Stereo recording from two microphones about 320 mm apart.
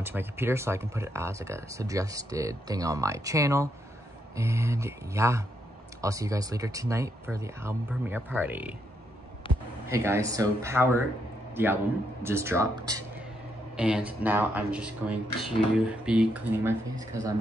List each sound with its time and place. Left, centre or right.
0.0 s speech: centre
9.5 s a sound: centre
9.8 s speech: centre